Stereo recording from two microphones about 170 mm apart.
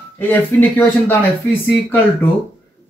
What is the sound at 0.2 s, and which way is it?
Speech, 10° left (ahead or behind).